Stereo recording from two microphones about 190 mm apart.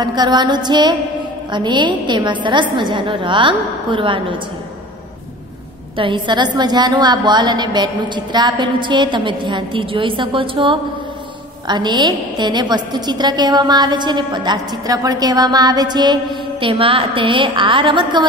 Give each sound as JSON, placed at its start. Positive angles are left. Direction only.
{"t": 0.0, "sound": "a woman's voice", "side_deg": -20}
{"t": 5.9, "sound": "a woman's voice", "side_deg": -25}